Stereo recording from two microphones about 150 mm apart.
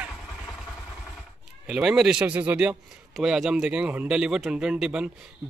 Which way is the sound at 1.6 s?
5° right (ahead or behind).